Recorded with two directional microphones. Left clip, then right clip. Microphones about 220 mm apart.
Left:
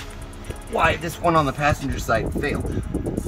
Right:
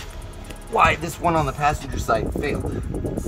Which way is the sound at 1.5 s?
25° right (ahead or behind).